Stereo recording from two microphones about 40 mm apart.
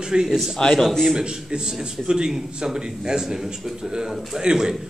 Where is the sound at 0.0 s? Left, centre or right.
Centre.